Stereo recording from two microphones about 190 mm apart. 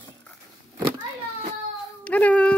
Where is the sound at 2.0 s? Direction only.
5° left (ahead or behind).